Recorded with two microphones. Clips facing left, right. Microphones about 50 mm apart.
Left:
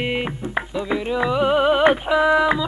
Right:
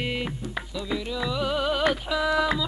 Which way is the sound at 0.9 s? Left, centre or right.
Left.